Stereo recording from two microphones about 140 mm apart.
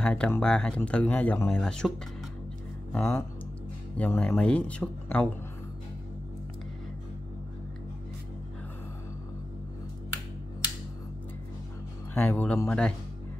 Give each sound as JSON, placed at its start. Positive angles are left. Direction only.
{"t": 0.0, "sound": "speech", "side_deg": 10}
{"t": 12.1, "sound": "speech", "side_deg": 10}